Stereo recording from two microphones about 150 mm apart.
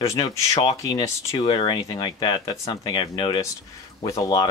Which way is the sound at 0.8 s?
25° left (ahead or behind).